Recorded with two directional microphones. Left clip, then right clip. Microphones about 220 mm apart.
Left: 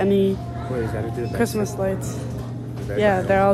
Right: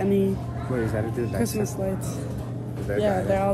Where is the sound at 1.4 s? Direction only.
Centre (ahead or behind).